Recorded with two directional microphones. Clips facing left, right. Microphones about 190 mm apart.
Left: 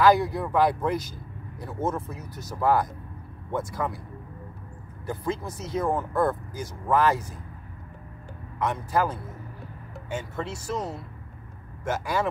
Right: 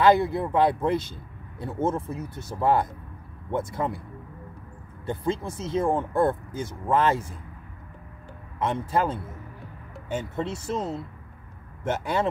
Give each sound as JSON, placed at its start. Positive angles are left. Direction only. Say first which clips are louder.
{"t": 0.0, "sound": "a man's voice", "louder": "right 1 dB", "side_deg": -25}
{"t": 5.0, "sound": "a man's voice", "louder": "right 2 dB", "side_deg": -25}
{"t": 8.5, "sound": "a man's voice", "louder": "right 1 dB", "side_deg": -25}
{"t": 10.3, "sound": "a man's voice", "louder": "right 1 dB", "side_deg": -25}